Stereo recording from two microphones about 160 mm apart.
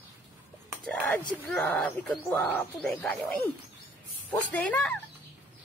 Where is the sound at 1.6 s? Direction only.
10° left (ahead or behind).